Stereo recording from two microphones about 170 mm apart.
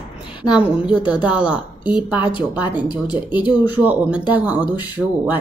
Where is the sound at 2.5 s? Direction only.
10° right (ahead or behind).